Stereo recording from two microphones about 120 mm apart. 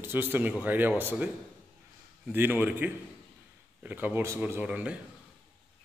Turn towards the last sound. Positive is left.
turn(degrees=-10)  # may be behind; listen again after turning